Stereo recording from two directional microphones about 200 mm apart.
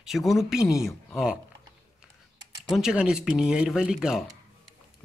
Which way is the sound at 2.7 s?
5° right (ahead or behind).